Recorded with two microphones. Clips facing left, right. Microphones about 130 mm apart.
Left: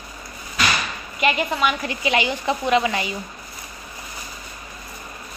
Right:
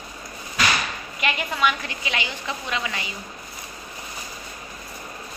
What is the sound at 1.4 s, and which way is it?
Speech, 5° left (ahead or behind).